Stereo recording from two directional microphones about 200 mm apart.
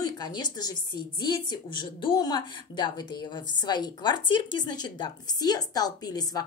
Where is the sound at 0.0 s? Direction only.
20° left (ahead or behind).